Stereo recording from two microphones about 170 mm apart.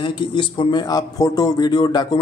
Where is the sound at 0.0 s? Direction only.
30° left (ahead or behind).